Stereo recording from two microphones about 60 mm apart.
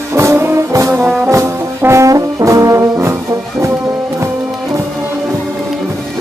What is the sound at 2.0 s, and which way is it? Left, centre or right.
Brass instrument, right.